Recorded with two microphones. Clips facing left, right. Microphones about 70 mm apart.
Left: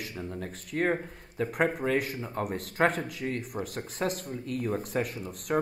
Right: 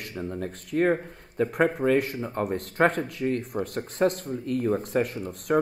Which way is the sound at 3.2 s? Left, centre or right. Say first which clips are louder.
Right 8 dB; right.